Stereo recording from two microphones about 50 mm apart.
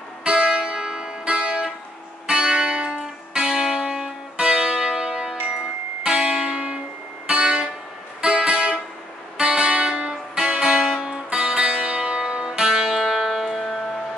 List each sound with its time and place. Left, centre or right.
0.2 s music: centre